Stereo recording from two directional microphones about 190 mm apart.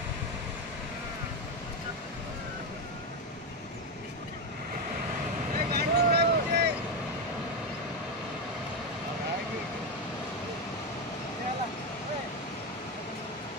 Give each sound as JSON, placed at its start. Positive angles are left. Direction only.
{"t": 5.7, "sound": "vehicle", "side_deg": -55}